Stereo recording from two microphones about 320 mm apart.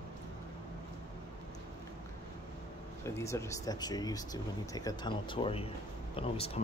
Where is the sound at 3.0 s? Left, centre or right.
Centre.